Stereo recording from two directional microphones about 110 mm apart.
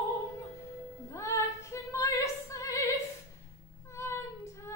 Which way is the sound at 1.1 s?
25° left (ahead or behind).